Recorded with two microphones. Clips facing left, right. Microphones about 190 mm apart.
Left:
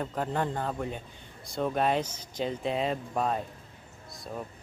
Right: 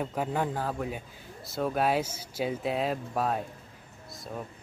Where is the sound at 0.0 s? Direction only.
10° right (ahead or behind).